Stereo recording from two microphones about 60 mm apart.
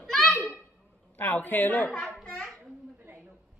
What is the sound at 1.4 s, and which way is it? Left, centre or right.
Speech, left.